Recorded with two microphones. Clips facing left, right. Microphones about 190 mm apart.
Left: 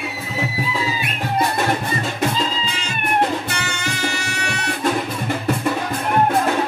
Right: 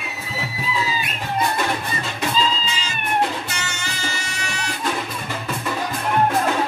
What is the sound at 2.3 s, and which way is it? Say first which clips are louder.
Music: right 1 dB; 60° left (ahead or behind).